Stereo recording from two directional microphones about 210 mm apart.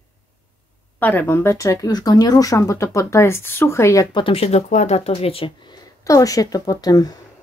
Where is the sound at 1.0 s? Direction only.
10° left (ahead or behind).